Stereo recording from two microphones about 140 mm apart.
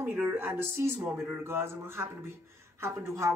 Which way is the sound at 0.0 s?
15° right (ahead or behind).